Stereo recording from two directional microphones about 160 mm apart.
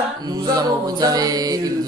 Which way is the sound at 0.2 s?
25° right (ahead or behind).